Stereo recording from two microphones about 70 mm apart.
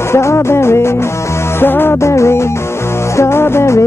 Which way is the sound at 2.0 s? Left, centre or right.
Left.